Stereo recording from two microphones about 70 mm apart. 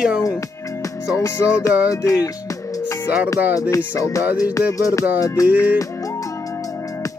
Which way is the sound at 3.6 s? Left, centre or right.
Left.